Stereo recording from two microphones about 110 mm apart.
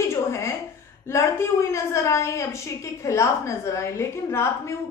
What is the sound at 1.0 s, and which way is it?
A woman's voice, 25° left (ahead or behind).